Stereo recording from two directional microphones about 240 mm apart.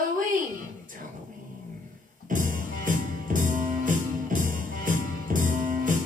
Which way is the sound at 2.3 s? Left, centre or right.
Right.